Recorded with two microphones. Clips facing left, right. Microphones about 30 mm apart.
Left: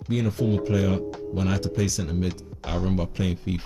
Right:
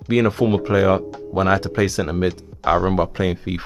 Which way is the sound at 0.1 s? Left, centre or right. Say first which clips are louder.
Right 8 dB; right.